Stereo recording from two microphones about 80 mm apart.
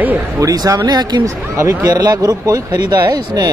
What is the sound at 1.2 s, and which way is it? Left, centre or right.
Speech, right.